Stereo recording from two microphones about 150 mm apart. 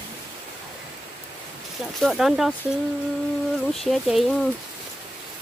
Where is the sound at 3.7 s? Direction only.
Centre (ahead or behind).